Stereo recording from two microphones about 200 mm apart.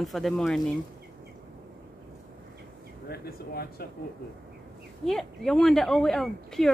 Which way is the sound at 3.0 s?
50° left (ahead or behind).